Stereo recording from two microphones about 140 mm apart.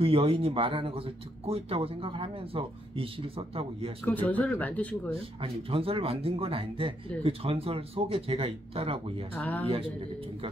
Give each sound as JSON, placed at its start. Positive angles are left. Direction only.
{"t": 0.0, "sound": "speech", "side_deg": -40}
{"t": 4.0, "sound": "speech", "side_deg": 10}
{"t": 5.4, "sound": "speech", "side_deg": -40}
{"t": 9.3, "sound": "speech", "side_deg": 10}